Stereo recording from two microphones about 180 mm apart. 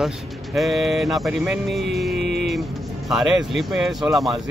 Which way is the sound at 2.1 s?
70° right (ahead or behind).